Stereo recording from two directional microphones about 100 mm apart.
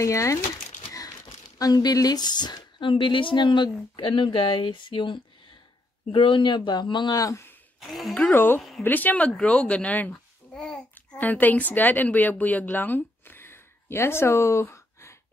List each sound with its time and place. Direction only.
0.0 s speech: 30° left (ahead or behind)
0.8 s crumpling: 35° left (ahead or behind)
1.6 s speech: 40° left (ahead or behind)
2.9 s a woman's voice: 55° left (ahead or behind)
7.2 s speech: 35° left (ahead or behind)
7.8 s speech: centre (ahead or behind)
8.3 s a woman's voice: 20° left (ahead or behind)
8.5 s a woman's voice: centre (ahead or behind)
8.8 s a child's voice: 20° left (ahead or behind)